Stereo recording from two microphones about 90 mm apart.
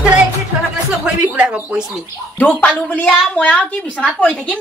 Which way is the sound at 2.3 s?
15° left (ahead or behind).